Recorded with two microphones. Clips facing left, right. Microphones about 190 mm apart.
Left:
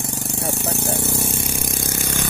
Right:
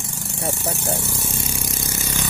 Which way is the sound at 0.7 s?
65° left (ahead or behind).